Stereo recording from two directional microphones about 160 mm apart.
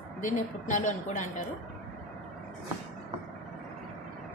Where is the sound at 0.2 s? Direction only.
55° left (ahead or behind).